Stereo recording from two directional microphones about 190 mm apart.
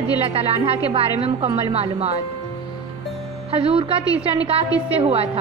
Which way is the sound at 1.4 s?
30° right (ahead or behind).